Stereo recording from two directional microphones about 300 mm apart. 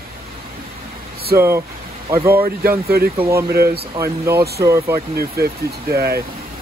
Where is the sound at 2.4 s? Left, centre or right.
Right.